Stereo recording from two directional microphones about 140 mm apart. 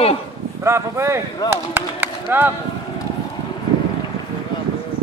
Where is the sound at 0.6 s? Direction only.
20° right (ahead or behind).